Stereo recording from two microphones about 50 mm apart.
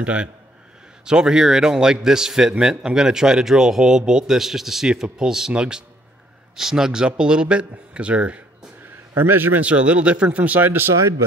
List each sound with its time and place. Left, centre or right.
0.0 s speech: right
1.0 s speech: centre
9.1 s a man's voice: right
9.6 s speech: right